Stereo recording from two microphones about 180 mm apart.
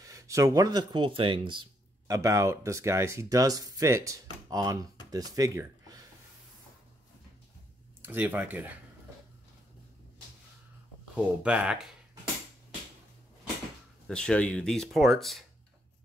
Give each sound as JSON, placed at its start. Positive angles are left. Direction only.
{"t": 0.0, "sound": "speech", "side_deg": -20}
{"t": 8.0, "sound": "speech", "side_deg": -10}
{"t": 11.1, "sound": "speech", "side_deg": -5}
{"t": 14.0, "sound": "speech", "side_deg": 5}